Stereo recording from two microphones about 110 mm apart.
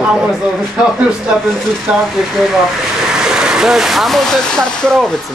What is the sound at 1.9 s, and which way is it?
Speech, 15° right (ahead or behind).